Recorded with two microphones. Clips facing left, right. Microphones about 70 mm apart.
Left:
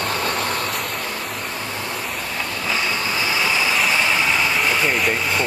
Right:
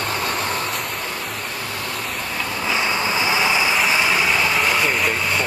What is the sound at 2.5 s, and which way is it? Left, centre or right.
Vehicle, centre.